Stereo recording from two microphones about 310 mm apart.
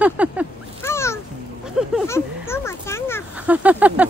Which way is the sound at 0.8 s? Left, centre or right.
Centre.